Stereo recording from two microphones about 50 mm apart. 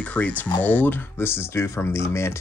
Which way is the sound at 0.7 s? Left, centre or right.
Left.